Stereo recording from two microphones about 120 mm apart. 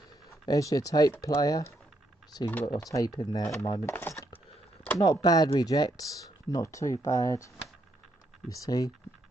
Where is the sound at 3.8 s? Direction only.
15° left (ahead or behind).